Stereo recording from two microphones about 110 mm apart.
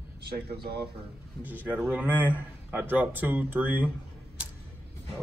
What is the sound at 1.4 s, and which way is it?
Speech, 15° right (ahead or behind).